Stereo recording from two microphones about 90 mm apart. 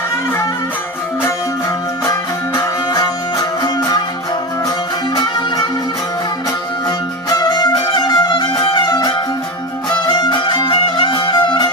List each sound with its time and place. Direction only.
2.0 s music: 45° left (ahead or behind)
7.2 s music: 50° left (ahead or behind)